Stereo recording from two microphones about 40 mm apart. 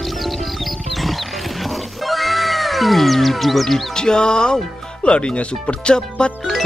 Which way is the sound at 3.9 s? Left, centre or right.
Centre.